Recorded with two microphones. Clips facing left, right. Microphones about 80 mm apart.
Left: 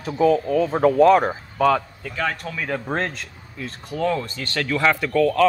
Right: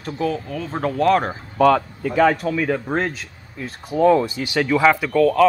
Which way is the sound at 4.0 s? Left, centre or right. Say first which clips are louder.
Right 8 dB; centre.